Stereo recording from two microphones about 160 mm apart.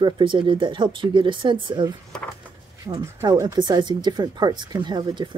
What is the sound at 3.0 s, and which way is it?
Speech, 20° right (ahead or behind).